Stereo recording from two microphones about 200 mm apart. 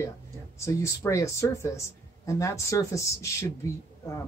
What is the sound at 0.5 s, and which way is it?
Speech, 15° left (ahead or behind).